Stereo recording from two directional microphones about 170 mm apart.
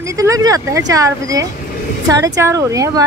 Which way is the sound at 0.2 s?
20° right (ahead or behind).